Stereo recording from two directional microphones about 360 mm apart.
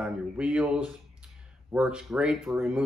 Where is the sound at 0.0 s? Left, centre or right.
Centre.